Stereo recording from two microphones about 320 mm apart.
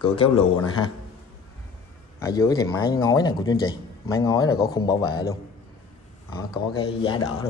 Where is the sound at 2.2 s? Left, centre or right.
Centre.